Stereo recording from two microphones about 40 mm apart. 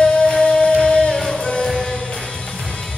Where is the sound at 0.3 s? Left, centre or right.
Left.